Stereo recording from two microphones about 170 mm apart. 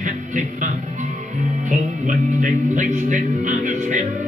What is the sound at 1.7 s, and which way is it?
Music, 50° right (ahead or behind).